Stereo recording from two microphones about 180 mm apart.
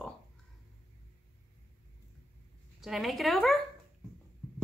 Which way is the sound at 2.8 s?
Centre (ahead or behind).